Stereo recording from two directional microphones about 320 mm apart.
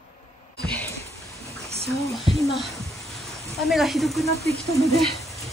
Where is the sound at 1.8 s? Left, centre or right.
Centre.